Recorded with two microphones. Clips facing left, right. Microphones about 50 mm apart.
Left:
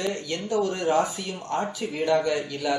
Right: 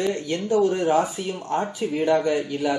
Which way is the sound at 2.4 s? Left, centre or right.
Centre.